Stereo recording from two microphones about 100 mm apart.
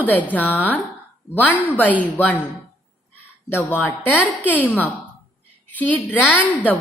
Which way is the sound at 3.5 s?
20° left (ahead or behind).